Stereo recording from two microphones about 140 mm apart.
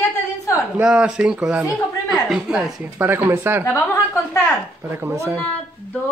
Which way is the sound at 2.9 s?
15° right (ahead or behind).